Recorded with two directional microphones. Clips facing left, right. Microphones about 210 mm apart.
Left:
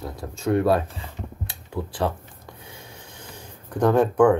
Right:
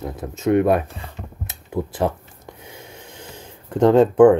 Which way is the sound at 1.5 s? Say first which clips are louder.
Right 7 dB; 20° right (ahead or behind).